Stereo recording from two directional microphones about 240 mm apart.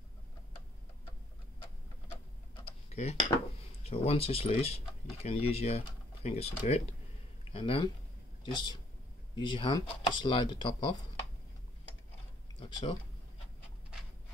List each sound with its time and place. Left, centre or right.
2.6 s tick-tock: left
3.8 s speech: left
12.5 s speech: centre